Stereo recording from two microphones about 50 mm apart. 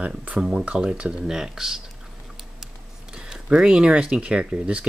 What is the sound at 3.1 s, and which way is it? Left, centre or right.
Speech, centre.